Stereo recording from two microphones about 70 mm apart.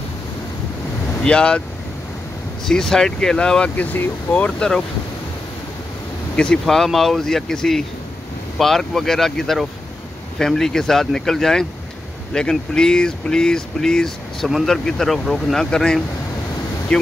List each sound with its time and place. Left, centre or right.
1.2 s speech: centre
2.6 s speech: centre
3.7 s speech: left
6.3 s speech: centre
6.6 s speech: centre